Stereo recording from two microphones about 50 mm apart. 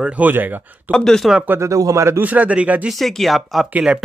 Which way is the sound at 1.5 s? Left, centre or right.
Right.